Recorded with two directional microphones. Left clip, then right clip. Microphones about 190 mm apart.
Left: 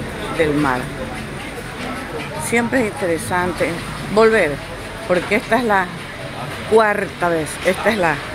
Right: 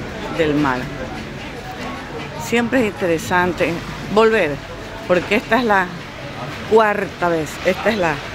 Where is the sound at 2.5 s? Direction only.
15° right (ahead or behind).